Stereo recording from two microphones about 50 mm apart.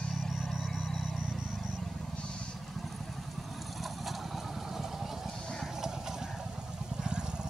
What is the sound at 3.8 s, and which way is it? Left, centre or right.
Vehicle, centre.